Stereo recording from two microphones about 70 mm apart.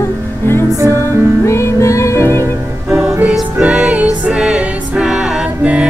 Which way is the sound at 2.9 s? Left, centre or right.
Centre.